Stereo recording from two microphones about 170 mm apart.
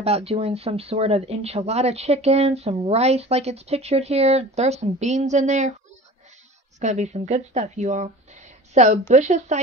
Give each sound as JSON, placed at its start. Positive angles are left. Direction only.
{"t": 0.0, "sound": "speech", "side_deg": -35}
{"t": 6.8, "sound": "speech", "side_deg": -45}